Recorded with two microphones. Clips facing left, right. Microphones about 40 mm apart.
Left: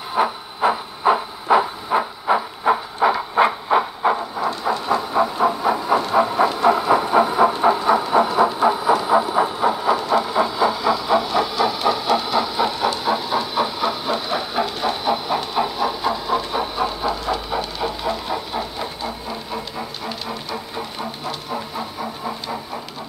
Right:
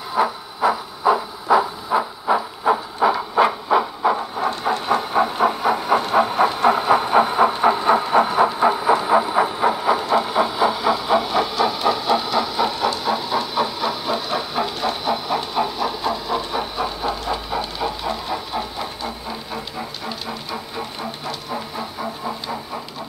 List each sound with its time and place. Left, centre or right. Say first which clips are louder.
0.1 s a sound: even; centre
1.0 s a sound: even; left
3.4 s train: even; left
4.5 s train: even; right
9.1 s train: even; right; by 18.9 s centre
21.5 s train: left 1 dB; centre